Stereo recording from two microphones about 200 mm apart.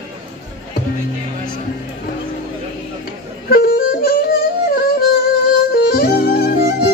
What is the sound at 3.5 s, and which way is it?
Music, 50° left (ahead or behind).